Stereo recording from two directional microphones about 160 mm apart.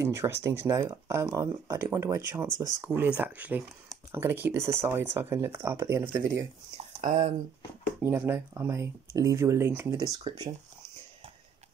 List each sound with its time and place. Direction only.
0.0 s speech: 15° right (ahead or behind)
7.0 s speech: 40° right (ahead or behind)
8.0 s speech: 15° right (ahead or behind)